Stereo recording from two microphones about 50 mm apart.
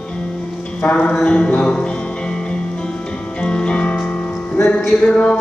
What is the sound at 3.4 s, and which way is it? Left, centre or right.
Music, left.